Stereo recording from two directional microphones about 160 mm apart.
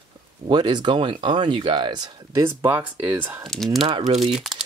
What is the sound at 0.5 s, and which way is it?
Speech, 25° right (ahead or behind).